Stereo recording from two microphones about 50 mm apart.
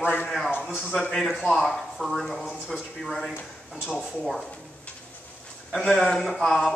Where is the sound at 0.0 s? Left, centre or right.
Left.